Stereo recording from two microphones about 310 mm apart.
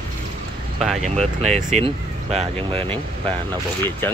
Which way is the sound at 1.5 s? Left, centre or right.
Right.